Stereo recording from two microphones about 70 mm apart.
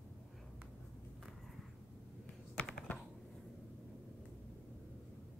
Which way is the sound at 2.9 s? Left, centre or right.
Left.